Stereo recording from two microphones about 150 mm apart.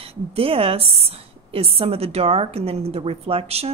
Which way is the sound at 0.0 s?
40° right (ahead or behind).